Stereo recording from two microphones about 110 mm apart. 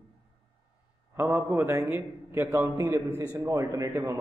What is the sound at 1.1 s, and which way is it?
A man's voice, 25° right (ahead or behind).